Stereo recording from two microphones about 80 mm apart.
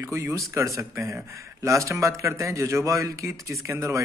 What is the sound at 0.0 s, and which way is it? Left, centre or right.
Speech, right.